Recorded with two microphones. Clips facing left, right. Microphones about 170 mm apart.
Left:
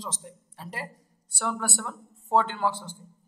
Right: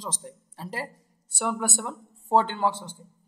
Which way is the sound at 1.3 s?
15° right (ahead or behind).